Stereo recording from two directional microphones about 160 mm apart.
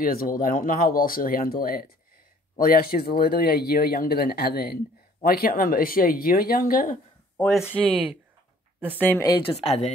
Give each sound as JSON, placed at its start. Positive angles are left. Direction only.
{"t": 0.0, "sound": "speech", "side_deg": 65}
{"t": 7.3, "sound": "speech", "side_deg": 5}
{"t": 7.6, "sound": "speech", "side_deg": -10}
{"t": 9.0, "sound": "a woman's voice", "side_deg": 10}
{"t": 9.6, "sound": "speech", "side_deg": 40}